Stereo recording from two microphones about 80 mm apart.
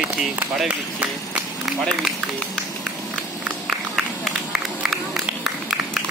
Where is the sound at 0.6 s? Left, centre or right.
Centre.